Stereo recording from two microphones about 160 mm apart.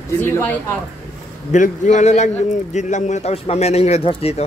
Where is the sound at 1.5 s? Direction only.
50° left (ahead or behind).